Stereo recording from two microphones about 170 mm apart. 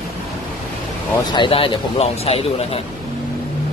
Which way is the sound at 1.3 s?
30° left (ahead or behind).